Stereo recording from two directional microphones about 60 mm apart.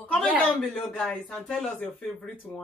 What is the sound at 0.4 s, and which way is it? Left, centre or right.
A woman's voice, centre.